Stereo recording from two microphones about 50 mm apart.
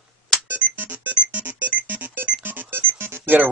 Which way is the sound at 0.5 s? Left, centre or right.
Right.